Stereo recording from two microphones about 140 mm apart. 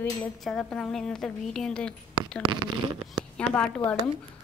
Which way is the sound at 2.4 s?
35° right (ahead or behind).